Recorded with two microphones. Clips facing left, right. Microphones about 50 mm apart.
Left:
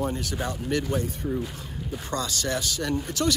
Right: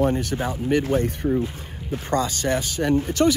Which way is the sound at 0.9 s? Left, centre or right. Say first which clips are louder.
Right 7 dB; right.